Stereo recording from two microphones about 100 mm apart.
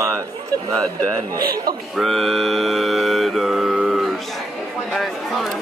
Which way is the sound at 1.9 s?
Centre (ahead or behind).